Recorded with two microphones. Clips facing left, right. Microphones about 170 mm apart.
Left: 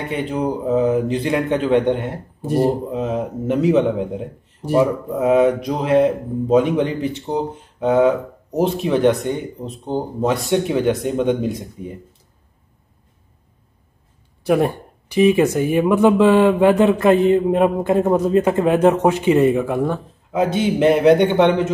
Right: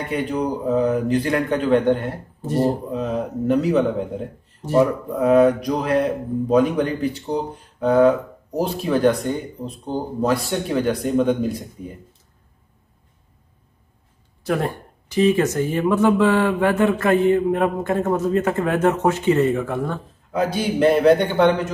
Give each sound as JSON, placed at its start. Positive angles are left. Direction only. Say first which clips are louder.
{"t": 0.1, "sound": "speech", "louder": "left 1 dB", "side_deg": 25}
{"t": 3.0, "sound": "speech", "louder": "left 1 dB", "side_deg": 25}
{"t": 14.4, "sound": "speech", "louder": "left 6 dB", "side_deg": 15}